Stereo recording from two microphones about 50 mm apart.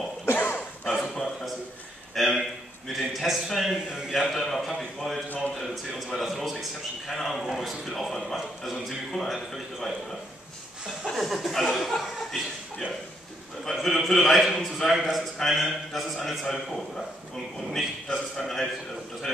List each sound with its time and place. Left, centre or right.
0.2 s throat clearing: left
0.9 s a sound: centre
4.1 s a man's voice: centre
5.6 s a man's voice: centre
11.1 s speech: centre
13.7 s a man's voice: centre